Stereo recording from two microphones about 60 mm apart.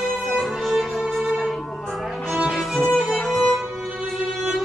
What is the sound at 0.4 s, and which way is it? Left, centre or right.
Music, centre.